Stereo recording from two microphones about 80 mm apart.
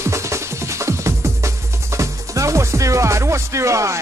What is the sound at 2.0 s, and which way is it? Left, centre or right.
Music, right.